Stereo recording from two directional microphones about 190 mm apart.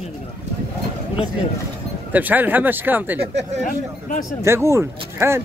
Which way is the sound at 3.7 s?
45° left (ahead or behind).